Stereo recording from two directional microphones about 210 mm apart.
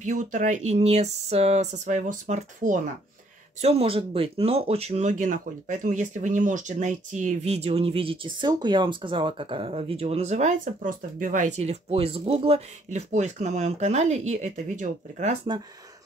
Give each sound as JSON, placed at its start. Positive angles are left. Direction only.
{"t": 0.0, "sound": "speech", "side_deg": -40}